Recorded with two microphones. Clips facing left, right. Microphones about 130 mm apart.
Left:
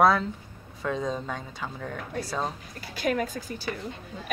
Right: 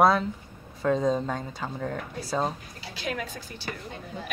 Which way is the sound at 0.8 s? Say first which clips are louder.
Right 5 dB; 35° right (ahead or behind).